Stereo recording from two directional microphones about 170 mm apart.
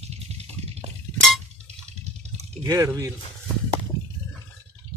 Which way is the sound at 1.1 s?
Centre (ahead or behind).